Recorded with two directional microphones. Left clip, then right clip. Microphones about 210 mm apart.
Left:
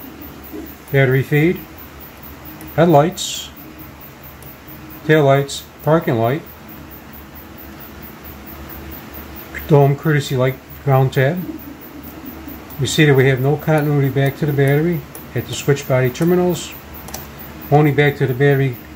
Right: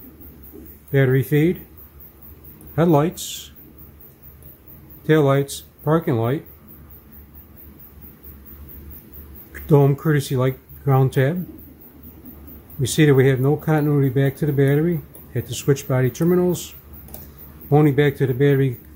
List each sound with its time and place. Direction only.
0.9 s speech: 35° right (ahead or behind)
2.7 s speech: 35° right (ahead or behind)
5.0 s speech: 35° right (ahead or behind)
9.7 s speech: 35° right (ahead or behind)
12.8 s speech: 35° right (ahead or behind)
17.6 s speech: 35° right (ahead or behind)